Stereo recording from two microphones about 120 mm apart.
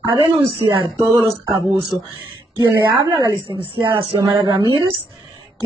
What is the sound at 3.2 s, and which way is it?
A woman's voice, 40° right (ahead or behind).